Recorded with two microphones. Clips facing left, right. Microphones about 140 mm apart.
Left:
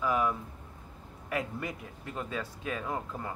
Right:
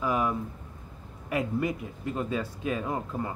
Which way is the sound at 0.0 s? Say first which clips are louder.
Right 2 dB; 15° right (ahead or behind).